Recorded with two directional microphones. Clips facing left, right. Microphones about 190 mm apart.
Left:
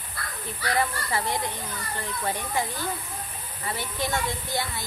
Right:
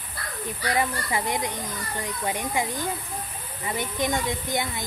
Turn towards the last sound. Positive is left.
turn(degrees=-20)  # may be behind; listen again after turning